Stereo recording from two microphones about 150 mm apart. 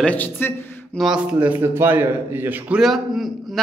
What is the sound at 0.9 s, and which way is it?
A man's voice, 5° right (ahead or behind).